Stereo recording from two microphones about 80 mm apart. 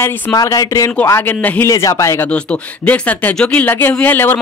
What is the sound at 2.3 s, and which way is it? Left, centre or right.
A man's voice, centre.